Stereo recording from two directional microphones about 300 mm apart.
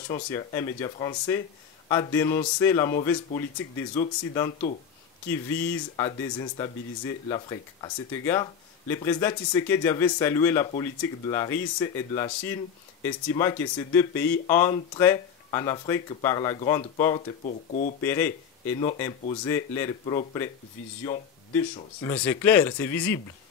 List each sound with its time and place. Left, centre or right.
0.1 s speech: centre
17.5 s speech: left
18.0 s speech: centre